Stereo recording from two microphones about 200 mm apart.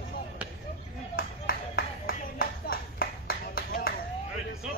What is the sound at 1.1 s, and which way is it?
Clapping, 45° left (ahead or behind).